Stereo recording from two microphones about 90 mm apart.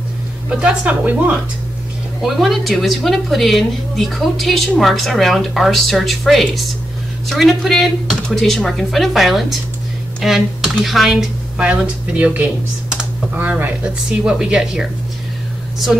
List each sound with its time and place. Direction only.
0.6 s a woman's voice: 15° right (ahead or behind)
2.2 s a woman's voice: centre (ahead or behind); by 13.7 s 20° right (ahead or behind)
14.2 s a woman's voice: 10° right (ahead or behind)